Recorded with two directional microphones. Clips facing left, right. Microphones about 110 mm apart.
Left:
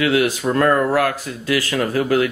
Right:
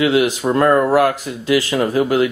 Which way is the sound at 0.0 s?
20° right (ahead or behind).